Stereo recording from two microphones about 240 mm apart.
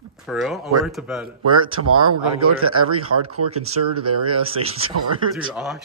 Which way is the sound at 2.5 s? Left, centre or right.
Right.